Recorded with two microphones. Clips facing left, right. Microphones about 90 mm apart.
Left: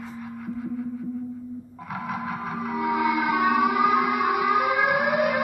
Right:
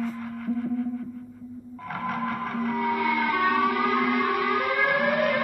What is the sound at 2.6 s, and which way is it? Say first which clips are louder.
Music: left 2 dB; 15° left (ahead or behind).